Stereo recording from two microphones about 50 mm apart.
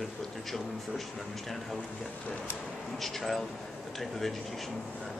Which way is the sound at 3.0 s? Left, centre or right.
Centre.